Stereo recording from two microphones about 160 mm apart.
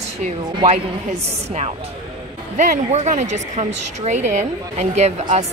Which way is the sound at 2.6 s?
50° right (ahead or behind).